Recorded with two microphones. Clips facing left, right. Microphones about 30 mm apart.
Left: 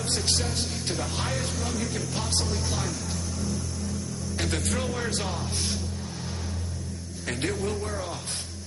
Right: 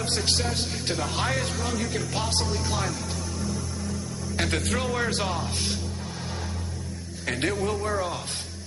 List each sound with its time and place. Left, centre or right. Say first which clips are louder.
0.3 s speech: right 2 dB; centre
4.4 s speech: right 3 dB; centre
7.4 s speech: right 3 dB; centre